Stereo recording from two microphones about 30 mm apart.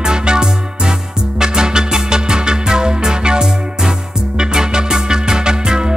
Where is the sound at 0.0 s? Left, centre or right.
Right.